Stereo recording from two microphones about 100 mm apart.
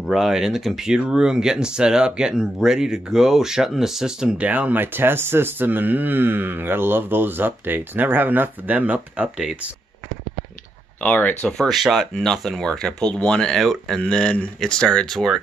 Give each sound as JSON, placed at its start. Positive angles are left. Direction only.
{"t": 0.0, "sound": "speech", "side_deg": -5}
{"t": 11.0, "sound": "speech", "side_deg": 15}
{"t": 11.5, "sound": "speech", "side_deg": 0}